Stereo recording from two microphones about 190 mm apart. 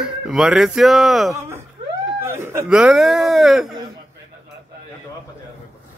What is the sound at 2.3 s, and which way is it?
Speech, 10° right (ahead or behind).